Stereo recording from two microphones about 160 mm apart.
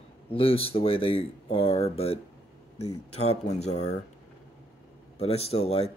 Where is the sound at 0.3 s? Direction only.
35° left (ahead or behind).